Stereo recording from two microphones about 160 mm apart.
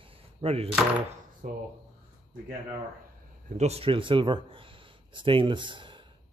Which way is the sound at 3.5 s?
45° right (ahead or behind).